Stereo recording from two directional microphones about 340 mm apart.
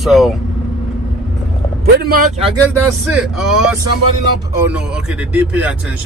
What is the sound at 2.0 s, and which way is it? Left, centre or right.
Speech, right.